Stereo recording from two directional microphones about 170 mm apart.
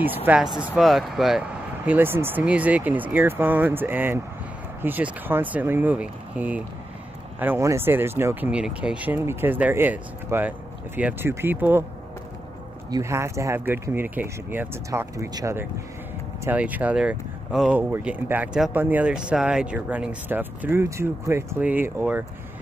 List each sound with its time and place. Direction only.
0.0 s speech: 10° right (ahead or behind)
1.9 s speech: 15° right (ahead or behind)
12.9 s speech: 15° right (ahead or behind)